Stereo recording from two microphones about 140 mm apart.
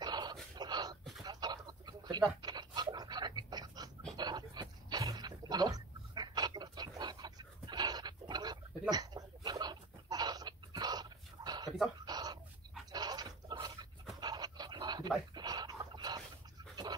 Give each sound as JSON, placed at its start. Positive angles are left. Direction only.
{"t": 0.0, "sound": "dog", "side_deg": -30}
{"t": 0.6, "sound": "a sound", "side_deg": -30}
{"t": 8.9, "sound": "chicken", "side_deg": -25}
{"t": 12.0, "sound": "bird", "side_deg": -30}
{"t": 12.9, "sound": "a sound", "side_deg": -30}
{"t": 14.2, "sound": "pant", "side_deg": -30}